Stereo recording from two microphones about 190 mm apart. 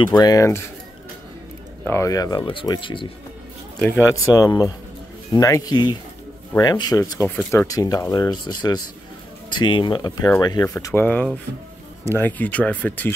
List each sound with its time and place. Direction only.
0.0 s speech: 20° left (ahead or behind)
1.9 s speech: 15° left (ahead or behind)
3.8 s speech: 10° left (ahead or behind)